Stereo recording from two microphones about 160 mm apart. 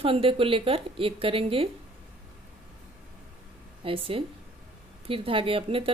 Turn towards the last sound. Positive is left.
turn(degrees=-35)  # may be behind; listen again after turning